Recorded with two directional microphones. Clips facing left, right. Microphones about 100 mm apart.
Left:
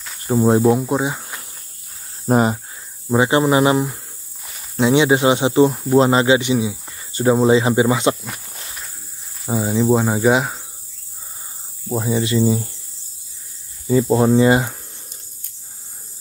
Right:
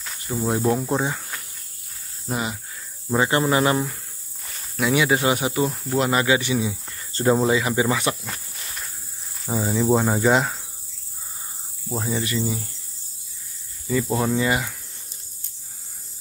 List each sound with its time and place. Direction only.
0.3 s speech: 30° left (ahead or behind)
0.6 s speech: 5° left (ahead or behind)
2.2 s speech: 45° left (ahead or behind)
3.1 s speech: 20° left (ahead or behind)
6.7 s cricket: 15° left (ahead or behind)
7.4 s speech: 25° left (ahead or behind)
9.5 s speech: 10° left (ahead or behind)
11.9 s speech: 5° left (ahead or behind)
12.2 s speech: 25° left (ahead or behind)
13.8 s speech: 25° left (ahead or behind)